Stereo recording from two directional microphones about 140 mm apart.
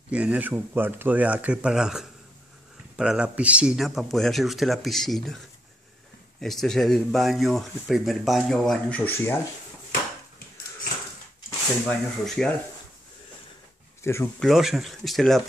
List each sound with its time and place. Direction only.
0.1 s speech: 10° right (ahead or behind)
6.4 s speech: centre (ahead or behind)
11.9 s speech: 5° left (ahead or behind)
14.0 s speech: 20° left (ahead or behind)
14.4 s speech: centre (ahead or behind)